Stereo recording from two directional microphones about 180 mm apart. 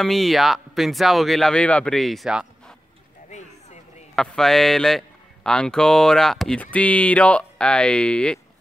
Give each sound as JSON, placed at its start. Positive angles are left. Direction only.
{"t": 0.0, "sound": "a man's voice", "side_deg": 0}
{"t": 3.3, "sound": "a sound", "side_deg": 40}
{"t": 4.1, "sound": "a man's voice", "side_deg": 0}